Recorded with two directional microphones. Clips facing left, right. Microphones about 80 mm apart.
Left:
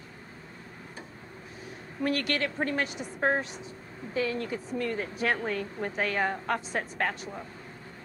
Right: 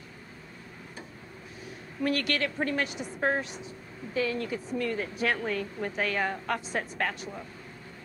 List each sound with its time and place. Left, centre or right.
2.0 s speech: left